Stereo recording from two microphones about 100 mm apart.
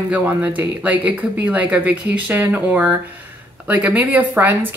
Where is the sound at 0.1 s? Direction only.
15° right (ahead or behind).